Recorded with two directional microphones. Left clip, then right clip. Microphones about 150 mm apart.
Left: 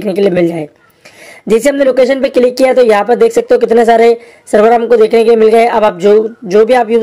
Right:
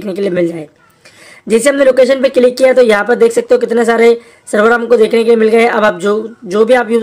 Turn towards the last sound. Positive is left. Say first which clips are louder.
# left 2 dB
turn(degrees=10)  # may be behind; listen again after turning